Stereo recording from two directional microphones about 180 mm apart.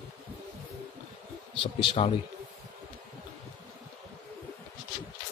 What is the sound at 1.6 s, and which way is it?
Speech, 30° left (ahead or behind).